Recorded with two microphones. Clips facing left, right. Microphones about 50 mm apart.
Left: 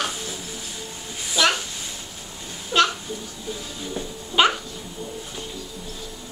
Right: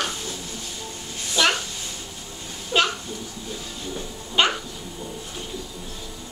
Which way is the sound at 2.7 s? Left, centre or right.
Centre.